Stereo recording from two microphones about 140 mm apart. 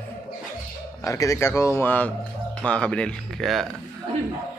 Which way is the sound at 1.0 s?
25° left (ahead or behind).